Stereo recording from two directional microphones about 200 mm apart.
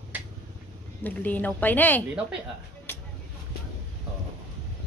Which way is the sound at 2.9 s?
10° left (ahead or behind).